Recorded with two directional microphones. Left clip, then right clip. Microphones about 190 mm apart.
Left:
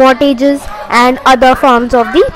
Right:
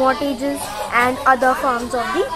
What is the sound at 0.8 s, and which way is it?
Speech, 30° left (ahead or behind).